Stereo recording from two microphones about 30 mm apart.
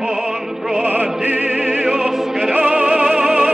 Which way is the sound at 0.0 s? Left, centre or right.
Centre.